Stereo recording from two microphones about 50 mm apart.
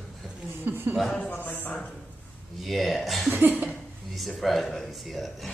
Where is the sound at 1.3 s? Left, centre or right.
Left.